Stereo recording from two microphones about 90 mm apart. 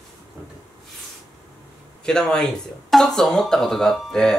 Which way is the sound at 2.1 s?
10° left (ahead or behind).